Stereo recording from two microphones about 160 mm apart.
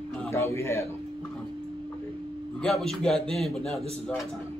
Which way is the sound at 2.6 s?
Centre (ahead or behind).